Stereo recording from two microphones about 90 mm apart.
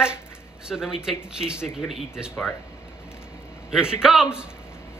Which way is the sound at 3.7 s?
5° right (ahead or behind).